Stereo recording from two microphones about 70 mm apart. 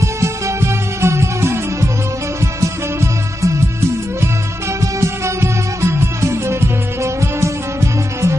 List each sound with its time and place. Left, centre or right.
0.0 s music: right
3.0 s music: right
4.7 s music: right